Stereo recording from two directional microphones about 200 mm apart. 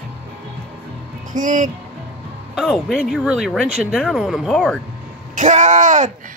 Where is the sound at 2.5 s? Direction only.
Centre (ahead or behind).